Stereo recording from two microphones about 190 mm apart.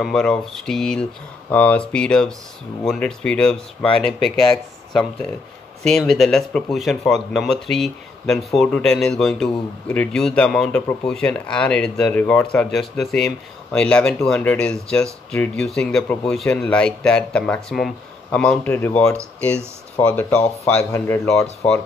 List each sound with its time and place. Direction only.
0.0 s speech: 5° left (ahead or behind)
6.0 s speech: centre (ahead or behind)